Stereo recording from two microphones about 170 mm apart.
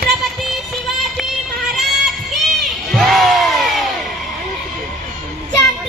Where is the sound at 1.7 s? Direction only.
Centre (ahead or behind).